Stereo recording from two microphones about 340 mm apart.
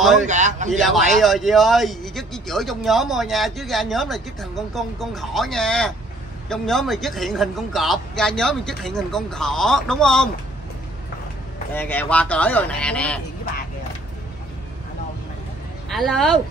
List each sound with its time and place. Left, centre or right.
0.3 s a man's voice: right
0.7 s speech: centre
11.7 s speech: centre
15.9 s speech: centre